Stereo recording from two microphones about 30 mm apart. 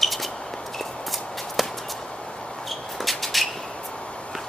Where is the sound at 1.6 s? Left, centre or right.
Centre.